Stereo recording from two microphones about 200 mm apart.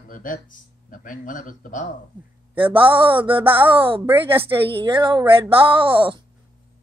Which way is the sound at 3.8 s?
25° right (ahead or behind).